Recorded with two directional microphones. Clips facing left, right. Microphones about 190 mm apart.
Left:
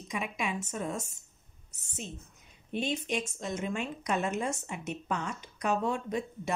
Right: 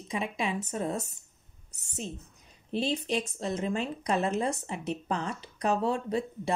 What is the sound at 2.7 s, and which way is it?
Speech, 35° right (ahead or behind).